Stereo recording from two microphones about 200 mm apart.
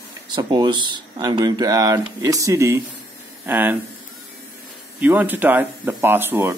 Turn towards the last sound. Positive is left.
turn(degrees=-10)  # may be behind; listen again after turning